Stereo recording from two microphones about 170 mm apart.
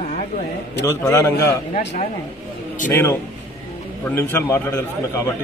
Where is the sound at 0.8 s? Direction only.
15° left (ahead or behind).